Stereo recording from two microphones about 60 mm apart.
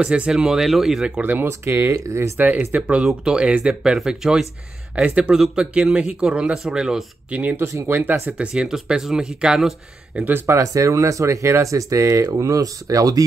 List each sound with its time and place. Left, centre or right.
0.0 s speech: centre
1.2 s speech: right
1.5 s speech: right
2.0 s speech: right
2.6 s speech: right
3.0 s speech: centre
7.2 s speech: right
7.8 s speech: right
8.4 s speech: centre
10.2 s speech: right
10.5 s speech: right
12.3 s speech: right